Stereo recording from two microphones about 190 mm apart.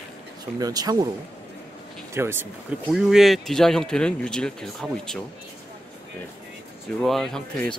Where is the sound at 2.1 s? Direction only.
10° right (ahead or behind).